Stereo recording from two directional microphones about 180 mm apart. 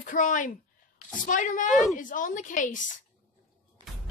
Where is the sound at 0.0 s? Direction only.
45° left (ahead or behind).